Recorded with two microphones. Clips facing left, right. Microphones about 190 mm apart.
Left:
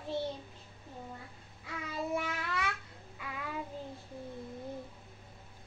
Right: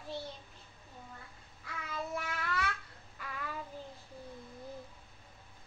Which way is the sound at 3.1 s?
10° left (ahead or behind).